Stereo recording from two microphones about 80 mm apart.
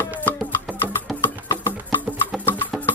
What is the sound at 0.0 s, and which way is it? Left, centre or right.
Music, left.